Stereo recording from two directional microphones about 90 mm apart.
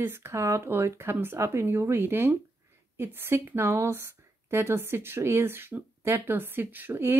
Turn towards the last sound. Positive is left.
turn(degrees=-20)  # may be behind; listen again after turning